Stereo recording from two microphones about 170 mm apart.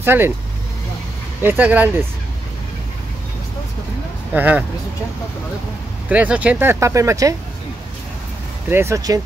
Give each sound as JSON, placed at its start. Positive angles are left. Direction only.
{"t": 0.0, "sound": "speech", "side_deg": -10}
{"t": 1.4, "sound": "speech", "side_deg": -10}
{"t": 4.3, "sound": "speech", "side_deg": -10}
{"t": 6.0, "sound": "speech", "side_deg": -5}
{"t": 8.6, "sound": "speech", "side_deg": -15}